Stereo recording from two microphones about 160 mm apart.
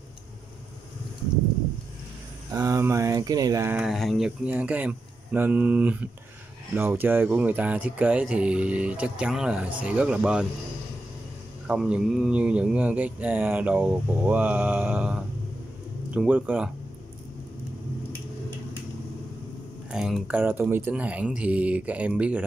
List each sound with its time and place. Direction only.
2.5 s a sound: 20° right (ahead or behind)
3.8 s speech: centre (ahead or behind)
11.6 s speech: 5° right (ahead or behind)
19.9 s speech: 5° right (ahead or behind)